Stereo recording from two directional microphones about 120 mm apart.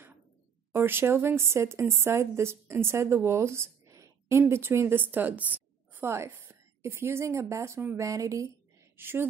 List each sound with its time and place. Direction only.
0.7 s a woman's voice: 20° right (ahead or behind)